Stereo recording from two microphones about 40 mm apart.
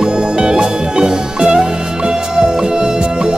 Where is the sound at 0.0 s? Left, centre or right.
Right.